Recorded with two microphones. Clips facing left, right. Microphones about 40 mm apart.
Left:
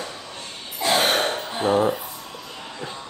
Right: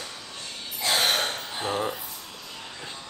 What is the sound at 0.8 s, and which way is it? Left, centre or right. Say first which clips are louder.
Throat clearing: left 4 dB; left.